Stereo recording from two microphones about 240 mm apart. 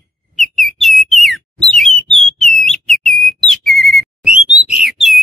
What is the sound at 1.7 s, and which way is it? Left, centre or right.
Bird, centre.